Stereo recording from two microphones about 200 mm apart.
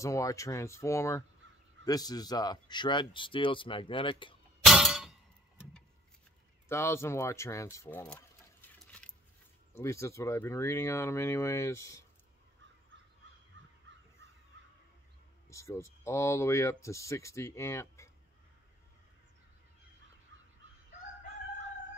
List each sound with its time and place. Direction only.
0.0 s speech: 15° left (ahead or behind)
4.6 s clang: centre (ahead or behind)
6.7 s speech: 15° left (ahead or behind)
12.9 s crow: 65° right (ahead or behind)
15.5 s speech: 15° left (ahead or behind)